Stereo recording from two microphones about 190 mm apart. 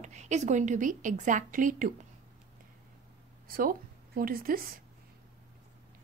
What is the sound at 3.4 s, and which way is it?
A woman's voice, 50° right (ahead or behind).